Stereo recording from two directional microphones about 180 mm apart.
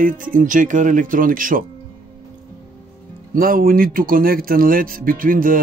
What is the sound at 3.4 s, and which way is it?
Speech, 55° right (ahead or behind).